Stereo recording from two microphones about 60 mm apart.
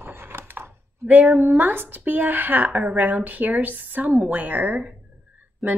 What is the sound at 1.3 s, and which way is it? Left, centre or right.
A woman's voice, right.